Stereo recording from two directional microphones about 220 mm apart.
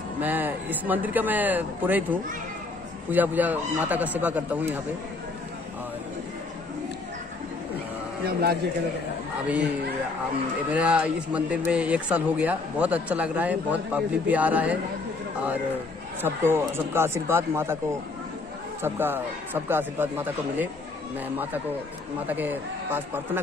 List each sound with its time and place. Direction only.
0.2 s speech: 10° right (ahead or behind)
8.3 s a man's voice: 45° right (ahead or behind)
10.7 s speech: 5° right (ahead or behind)
16.2 s speech: 10° right (ahead or behind)
18.8 s speech: 10° right (ahead or behind)
22.2 s speech: 10° right (ahead or behind)